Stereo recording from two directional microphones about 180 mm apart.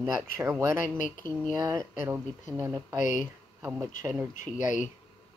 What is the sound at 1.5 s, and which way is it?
Speech, 20° right (ahead or behind).